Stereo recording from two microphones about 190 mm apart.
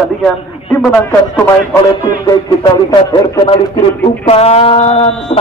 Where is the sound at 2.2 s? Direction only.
25° left (ahead or behind).